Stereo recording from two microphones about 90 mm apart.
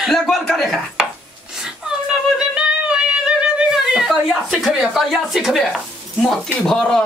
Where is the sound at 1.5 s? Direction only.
5° right (ahead or behind).